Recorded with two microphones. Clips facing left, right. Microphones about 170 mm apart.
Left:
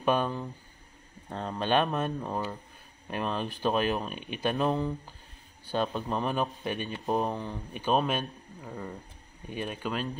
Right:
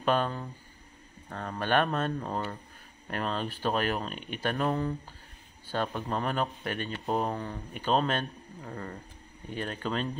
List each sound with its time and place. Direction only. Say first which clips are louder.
0.0 s speech: left 1 dB; 15° left (ahead or behind)
1.5 s speech: even; 15° left (ahead or behind)